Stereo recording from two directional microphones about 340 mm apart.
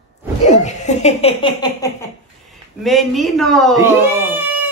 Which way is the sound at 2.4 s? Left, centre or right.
Centre.